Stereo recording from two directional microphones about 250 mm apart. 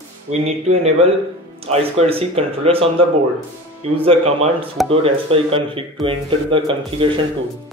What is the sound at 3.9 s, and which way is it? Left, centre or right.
Speech, right.